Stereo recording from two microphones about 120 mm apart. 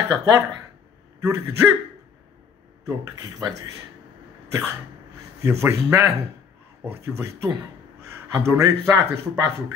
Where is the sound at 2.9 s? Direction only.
35° right (ahead or behind).